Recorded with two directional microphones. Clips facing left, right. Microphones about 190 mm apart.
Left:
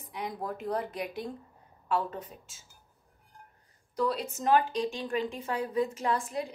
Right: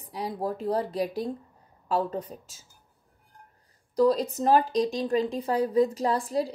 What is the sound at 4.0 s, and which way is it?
Speech, 35° right (ahead or behind).